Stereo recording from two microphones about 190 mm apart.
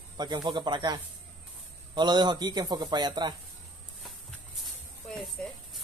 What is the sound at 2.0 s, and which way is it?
Speech, 25° right (ahead or behind).